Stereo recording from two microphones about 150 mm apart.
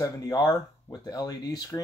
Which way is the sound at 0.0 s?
25° left (ahead or behind).